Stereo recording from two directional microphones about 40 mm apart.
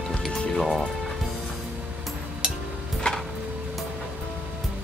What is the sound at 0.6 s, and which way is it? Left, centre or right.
Speech, centre.